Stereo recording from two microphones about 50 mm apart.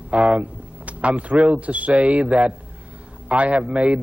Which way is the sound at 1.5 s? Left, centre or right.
Right.